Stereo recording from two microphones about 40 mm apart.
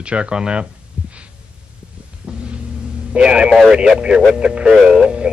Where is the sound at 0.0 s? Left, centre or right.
Right.